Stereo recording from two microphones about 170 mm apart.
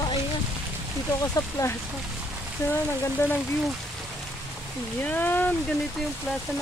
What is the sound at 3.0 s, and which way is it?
Speech, 15° left (ahead or behind).